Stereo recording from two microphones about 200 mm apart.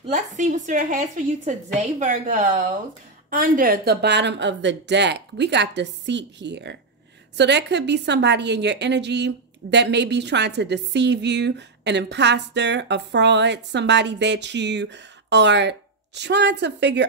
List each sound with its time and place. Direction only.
0.1 s a woman's voice: 35° right (ahead or behind); by 17.0 s 60° right (ahead or behind)